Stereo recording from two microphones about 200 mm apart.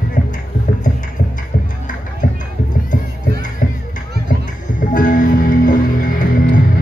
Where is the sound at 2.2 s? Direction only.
40° left (ahead or behind).